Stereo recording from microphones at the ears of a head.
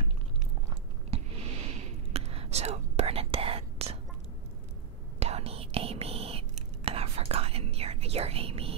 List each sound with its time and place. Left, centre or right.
1.1 s whispering: right
5.2 s whispering: right